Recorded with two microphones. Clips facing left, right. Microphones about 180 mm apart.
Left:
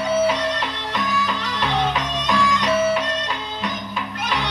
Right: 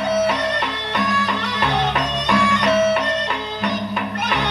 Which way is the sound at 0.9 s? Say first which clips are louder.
Right 2 dB; 65° right (ahead or behind).